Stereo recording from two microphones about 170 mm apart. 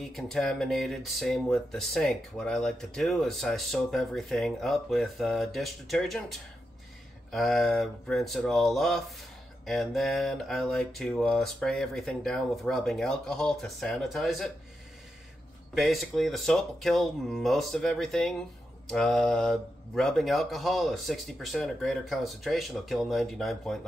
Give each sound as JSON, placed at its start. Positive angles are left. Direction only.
{"t": 0.0, "sound": "speech", "side_deg": 0}
{"t": 15.7, "sound": "speech", "side_deg": 0}